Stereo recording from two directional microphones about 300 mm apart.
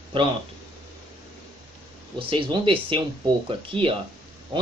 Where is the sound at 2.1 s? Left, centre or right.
Centre.